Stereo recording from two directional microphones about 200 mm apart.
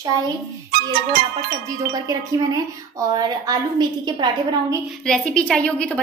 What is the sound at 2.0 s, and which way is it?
A woman's voice, 20° right (ahead or behind).